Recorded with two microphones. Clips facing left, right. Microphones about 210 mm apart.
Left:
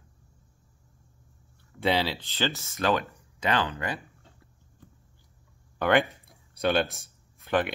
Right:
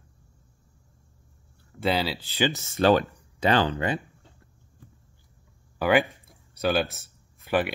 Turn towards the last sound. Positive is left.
turn(degrees=-5)  # may be behind; listen again after turning